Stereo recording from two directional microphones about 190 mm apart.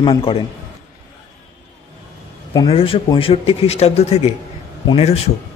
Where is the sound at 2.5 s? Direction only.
25° left (ahead or behind).